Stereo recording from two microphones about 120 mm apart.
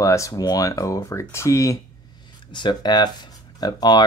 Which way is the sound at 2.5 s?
40° left (ahead or behind).